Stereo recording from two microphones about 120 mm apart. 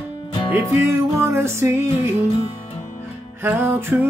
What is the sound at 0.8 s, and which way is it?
Music, 20° right (ahead or behind).